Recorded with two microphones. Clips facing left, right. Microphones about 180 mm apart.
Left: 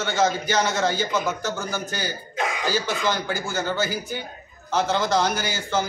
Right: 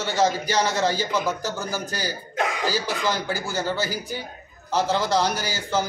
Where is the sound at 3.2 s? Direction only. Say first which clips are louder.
Even; 35° right (ahead or behind).